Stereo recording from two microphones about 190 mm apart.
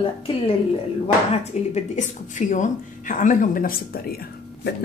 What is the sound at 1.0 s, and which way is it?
Speech, 35° left (ahead or behind).